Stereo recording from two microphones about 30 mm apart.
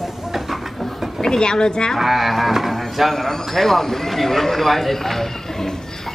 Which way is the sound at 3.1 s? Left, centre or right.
Centre.